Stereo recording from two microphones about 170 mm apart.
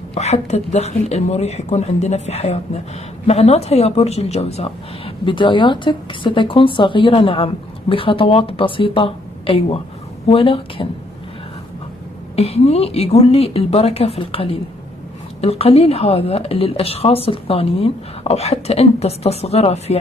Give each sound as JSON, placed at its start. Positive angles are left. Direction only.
{"t": 0.1, "sound": "speech", "side_deg": 40}
{"t": 12.4, "sound": "speech", "side_deg": 35}